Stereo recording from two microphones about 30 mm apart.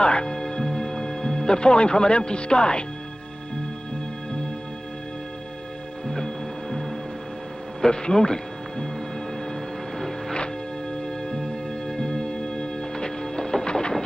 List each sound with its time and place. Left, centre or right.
0.0 s speech: left
0.3 s music: left
6.0 s music: centre
7.8 s speech: left
12.5 s music: left
13.7 s a sound: left